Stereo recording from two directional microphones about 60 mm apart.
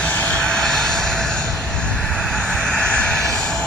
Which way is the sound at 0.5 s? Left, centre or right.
Centre.